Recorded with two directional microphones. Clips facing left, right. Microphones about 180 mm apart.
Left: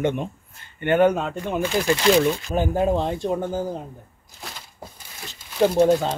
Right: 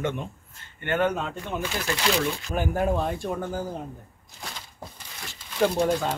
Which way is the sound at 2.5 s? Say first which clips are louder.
Left 1 dB; 20° left (ahead or behind).